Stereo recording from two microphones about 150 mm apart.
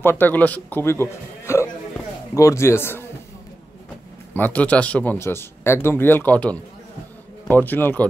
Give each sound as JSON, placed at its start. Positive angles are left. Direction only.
{"t": 0.0, "sound": "speech", "side_deg": 15}
{"t": 4.3, "sound": "speech", "side_deg": 10}